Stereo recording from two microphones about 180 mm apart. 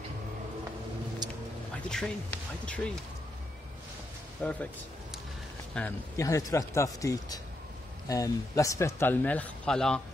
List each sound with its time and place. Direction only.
1.9 s speech: 5° left (ahead or behind)
4.4 s speech: 5° left (ahead or behind)
5.8 s speech: 15° left (ahead or behind)